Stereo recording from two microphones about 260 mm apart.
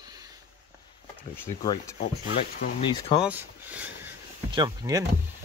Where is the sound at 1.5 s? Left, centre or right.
Centre.